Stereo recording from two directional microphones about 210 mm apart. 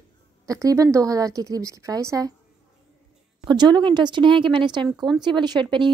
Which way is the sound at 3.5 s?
20° right (ahead or behind).